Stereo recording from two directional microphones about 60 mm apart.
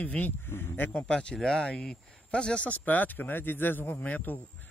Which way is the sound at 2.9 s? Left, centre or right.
Left.